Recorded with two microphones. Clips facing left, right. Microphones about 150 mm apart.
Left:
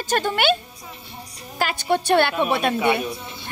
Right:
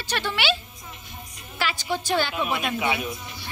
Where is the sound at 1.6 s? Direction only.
55° left (ahead or behind).